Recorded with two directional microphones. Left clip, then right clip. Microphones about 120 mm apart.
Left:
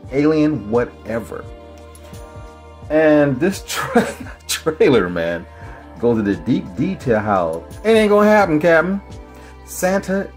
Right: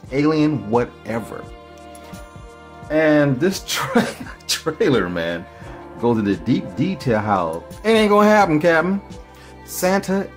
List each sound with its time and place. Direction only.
0.1 s speech: 15° right (ahead or behind)
2.9 s speech: 10° right (ahead or behind)
4.2 s speech: centre (ahead or behind)
6.0 s speech: 15° right (ahead or behind)
8.5 s speech: centre (ahead or behind)
9.8 s speech: 20° right (ahead or behind)